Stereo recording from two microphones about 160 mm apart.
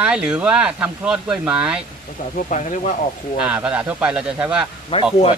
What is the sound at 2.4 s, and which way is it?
Speech, 50° left (ahead or behind).